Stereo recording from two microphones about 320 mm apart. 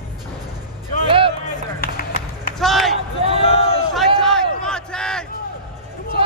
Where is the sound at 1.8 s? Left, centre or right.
Left.